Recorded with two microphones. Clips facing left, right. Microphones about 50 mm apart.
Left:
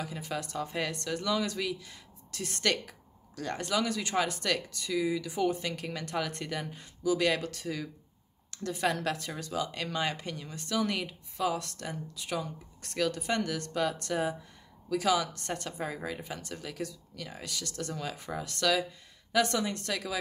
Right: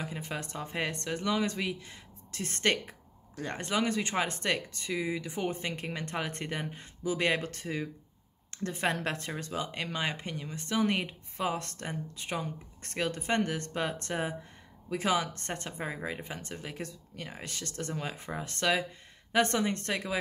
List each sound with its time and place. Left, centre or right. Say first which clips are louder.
0.0 s speech: left 1 dB; right